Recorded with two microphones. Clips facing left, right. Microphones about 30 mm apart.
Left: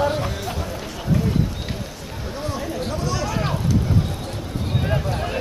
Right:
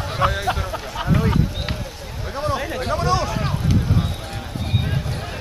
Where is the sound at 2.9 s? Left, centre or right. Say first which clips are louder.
Right 9 dB; right.